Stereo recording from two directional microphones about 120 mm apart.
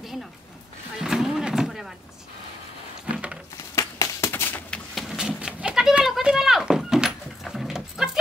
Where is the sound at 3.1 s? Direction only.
10° right (ahead or behind).